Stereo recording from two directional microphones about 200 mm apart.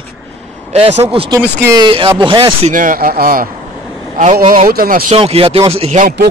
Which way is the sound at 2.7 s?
40° right (ahead or behind).